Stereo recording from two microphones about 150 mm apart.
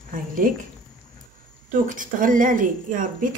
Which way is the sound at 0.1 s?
65° right (ahead or behind).